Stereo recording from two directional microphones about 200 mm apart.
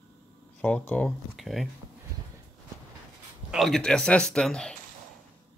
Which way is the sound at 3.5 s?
Centre (ahead or behind).